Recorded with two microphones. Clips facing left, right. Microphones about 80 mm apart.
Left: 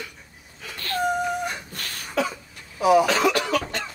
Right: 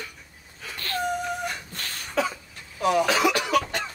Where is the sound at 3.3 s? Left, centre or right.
Centre.